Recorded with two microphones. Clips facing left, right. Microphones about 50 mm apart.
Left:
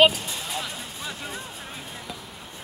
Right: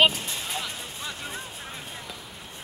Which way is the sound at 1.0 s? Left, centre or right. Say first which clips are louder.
Left 1 dB; centre.